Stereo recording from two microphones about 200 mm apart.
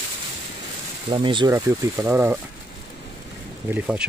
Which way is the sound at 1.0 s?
25° right (ahead or behind).